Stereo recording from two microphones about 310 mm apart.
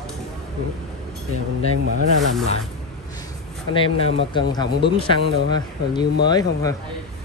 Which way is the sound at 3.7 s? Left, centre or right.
Centre.